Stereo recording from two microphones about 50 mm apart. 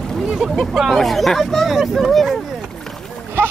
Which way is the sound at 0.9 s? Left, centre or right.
Centre.